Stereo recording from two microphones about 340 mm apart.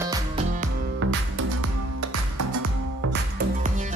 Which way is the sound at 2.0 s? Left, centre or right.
Right.